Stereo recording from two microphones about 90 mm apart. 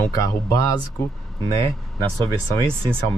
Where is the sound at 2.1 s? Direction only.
55° right (ahead or behind).